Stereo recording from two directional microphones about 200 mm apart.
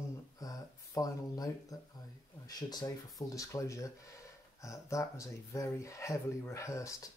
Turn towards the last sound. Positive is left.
turn(degrees=15)  # may be behind; listen again after turning